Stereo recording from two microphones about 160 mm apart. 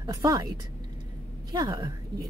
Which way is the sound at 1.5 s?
25° right (ahead or behind).